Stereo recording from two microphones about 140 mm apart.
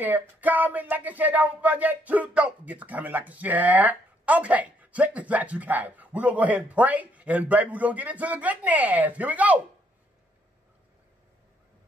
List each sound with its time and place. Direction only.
0.0 s speech: 10° right (ahead or behind)